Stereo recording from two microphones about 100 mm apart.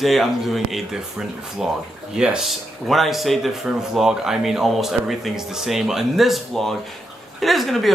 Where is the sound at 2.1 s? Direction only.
5° right (ahead or behind).